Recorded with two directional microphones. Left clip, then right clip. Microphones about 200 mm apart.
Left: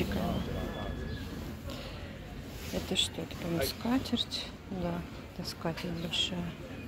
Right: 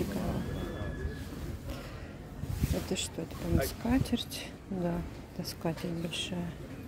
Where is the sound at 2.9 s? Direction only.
25° right (ahead or behind).